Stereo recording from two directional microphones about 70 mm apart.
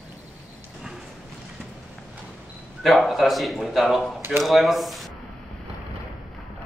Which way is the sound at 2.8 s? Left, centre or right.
Centre.